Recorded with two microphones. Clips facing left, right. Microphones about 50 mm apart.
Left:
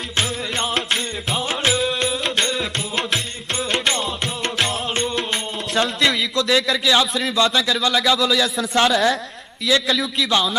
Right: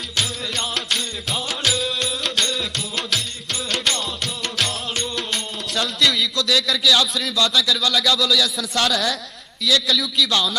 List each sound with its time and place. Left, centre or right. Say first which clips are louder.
0.2 s music: left 2 dB; left
2.2 s music: even; left
3.7 s music: left 2 dB; left
5.8 s a man's voice: left 2 dB; left